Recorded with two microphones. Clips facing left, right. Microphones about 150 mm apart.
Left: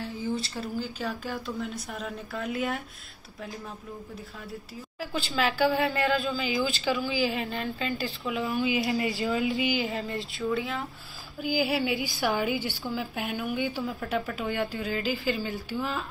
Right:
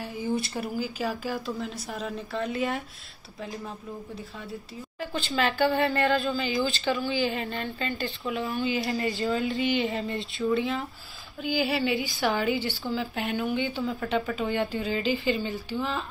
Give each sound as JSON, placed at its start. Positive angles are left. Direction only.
{"t": 0.4, "sound": "speech", "side_deg": -15}
{"t": 0.8, "sound": "speech", "side_deg": -5}
{"t": 5.0, "sound": "speech", "side_deg": 5}